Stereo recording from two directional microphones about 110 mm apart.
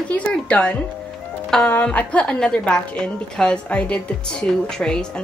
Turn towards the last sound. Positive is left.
turn(degrees=5)  # may be behind; listen again after turning